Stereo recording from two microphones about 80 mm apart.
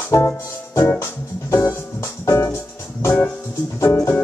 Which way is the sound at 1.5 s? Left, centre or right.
Left.